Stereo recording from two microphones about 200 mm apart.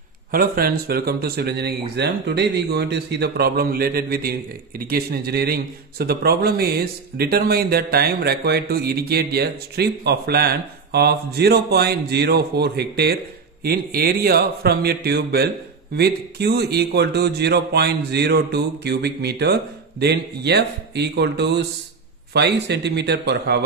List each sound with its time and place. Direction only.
0.3 s a man's voice: 45° right (ahead or behind)